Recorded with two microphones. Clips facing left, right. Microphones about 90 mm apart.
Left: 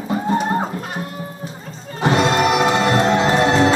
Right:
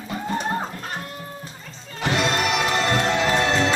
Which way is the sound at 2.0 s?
35° left (ahead or behind).